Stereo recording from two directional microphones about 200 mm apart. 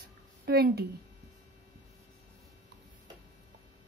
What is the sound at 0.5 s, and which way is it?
Speech, 50° right (ahead or behind).